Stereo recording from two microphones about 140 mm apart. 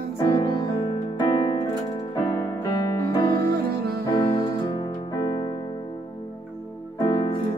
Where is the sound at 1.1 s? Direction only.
30° left (ahead or behind).